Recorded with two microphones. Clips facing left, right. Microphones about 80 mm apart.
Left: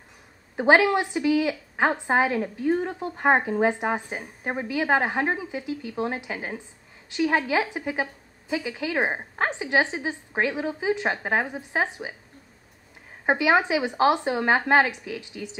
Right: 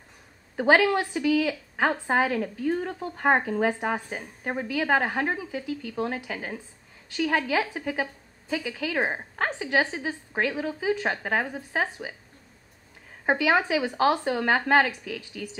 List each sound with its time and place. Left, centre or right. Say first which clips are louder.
0.6 s a woman's voice: left 2 dB; left
13.3 s a woman's voice: left 2 dB; left